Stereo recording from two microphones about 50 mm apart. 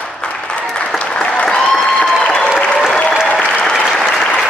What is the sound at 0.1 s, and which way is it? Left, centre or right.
Applause, centre.